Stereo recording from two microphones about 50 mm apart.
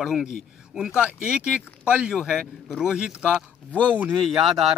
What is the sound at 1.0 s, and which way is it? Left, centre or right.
Speech, right.